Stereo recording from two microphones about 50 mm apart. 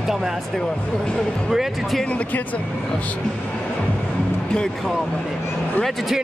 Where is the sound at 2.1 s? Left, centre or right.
Left.